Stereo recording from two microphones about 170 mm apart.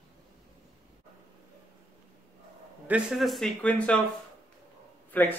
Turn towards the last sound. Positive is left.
turn(degrees=10)  # may be behind; listen again after turning